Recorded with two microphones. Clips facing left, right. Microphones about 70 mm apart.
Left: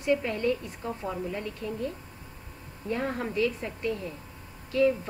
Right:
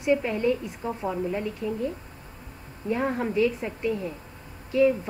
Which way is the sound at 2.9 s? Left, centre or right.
Centre.